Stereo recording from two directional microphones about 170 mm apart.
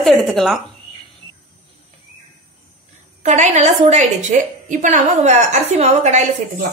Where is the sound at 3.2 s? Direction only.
45° right (ahead or behind).